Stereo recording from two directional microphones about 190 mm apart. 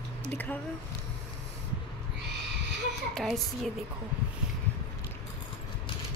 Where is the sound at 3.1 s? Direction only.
Centre (ahead or behind).